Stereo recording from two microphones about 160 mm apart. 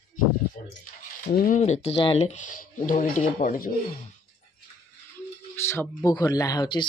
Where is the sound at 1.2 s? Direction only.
60° left (ahead or behind).